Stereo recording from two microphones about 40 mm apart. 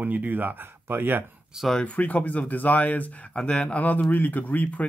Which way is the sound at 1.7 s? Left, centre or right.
Left.